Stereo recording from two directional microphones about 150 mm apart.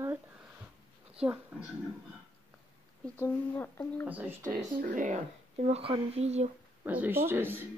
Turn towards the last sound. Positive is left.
turn(degrees=-15)  # may be behind; listen again after turning